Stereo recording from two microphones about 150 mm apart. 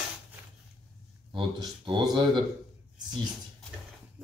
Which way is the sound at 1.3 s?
30° right (ahead or behind).